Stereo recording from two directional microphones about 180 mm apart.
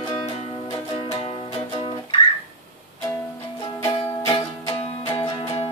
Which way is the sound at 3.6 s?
25° left (ahead or behind).